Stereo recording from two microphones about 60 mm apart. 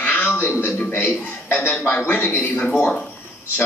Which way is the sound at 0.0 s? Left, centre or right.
Left.